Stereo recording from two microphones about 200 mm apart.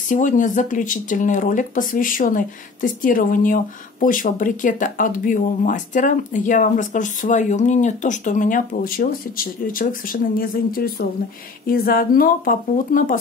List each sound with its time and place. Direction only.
0.1 s speech: 40° left (ahead or behind)